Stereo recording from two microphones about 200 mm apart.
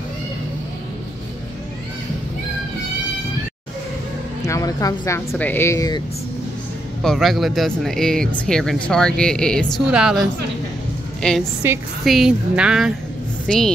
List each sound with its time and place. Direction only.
4.5 s a woman's voice: 15° left (ahead or behind)
7.0 s a woman's voice: centre (ahead or behind)
11.6 s a woman's voice: 10° right (ahead or behind)